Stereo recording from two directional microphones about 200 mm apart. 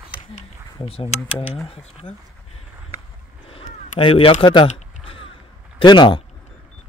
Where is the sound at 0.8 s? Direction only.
30° left (ahead or behind).